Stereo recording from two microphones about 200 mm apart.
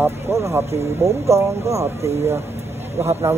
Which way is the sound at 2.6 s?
30° right (ahead or behind).